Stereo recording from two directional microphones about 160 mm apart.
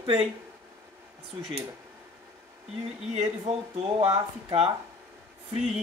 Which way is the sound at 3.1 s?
40° right (ahead or behind).